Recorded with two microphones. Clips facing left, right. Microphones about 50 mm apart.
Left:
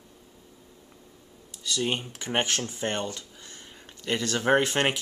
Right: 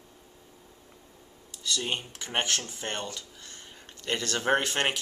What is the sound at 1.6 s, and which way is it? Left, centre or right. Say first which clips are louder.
Speech: left 3 dB; centre.